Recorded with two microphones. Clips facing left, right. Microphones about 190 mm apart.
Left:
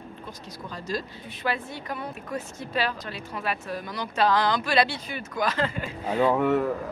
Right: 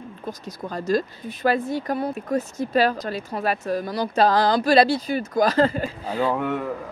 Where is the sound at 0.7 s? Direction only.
50° right (ahead or behind).